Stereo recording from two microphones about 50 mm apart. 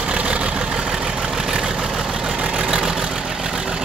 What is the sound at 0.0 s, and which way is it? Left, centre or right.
Vehicle, right.